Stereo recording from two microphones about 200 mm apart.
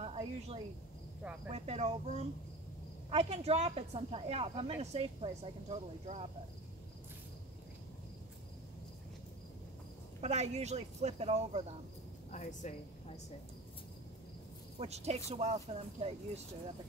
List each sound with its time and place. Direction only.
0.0 s speech: 30° right (ahead or behind)
10.2 s speech: 35° right (ahead or behind)
12.3 s speech: 35° left (ahead or behind)
14.8 s speech: 30° right (ahead or behind)